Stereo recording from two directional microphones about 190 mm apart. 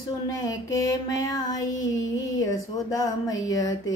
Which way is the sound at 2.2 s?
15° left (ahead or behind).